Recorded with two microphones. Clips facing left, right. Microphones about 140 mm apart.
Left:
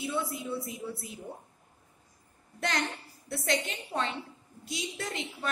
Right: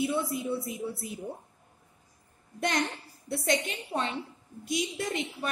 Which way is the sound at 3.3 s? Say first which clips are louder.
Right 2 dB; 20° right (ahead or behind).